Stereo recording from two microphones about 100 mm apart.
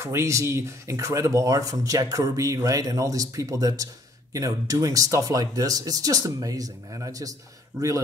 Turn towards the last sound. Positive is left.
turn(degrees=-30)  # may be behind; listen again after turning